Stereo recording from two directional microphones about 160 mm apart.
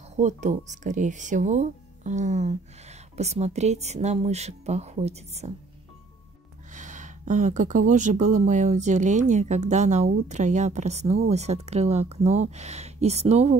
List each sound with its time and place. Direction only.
0.1 s speech: 50° right (ahead or behind)
6.7 s speech: 50° right (ahead or behind)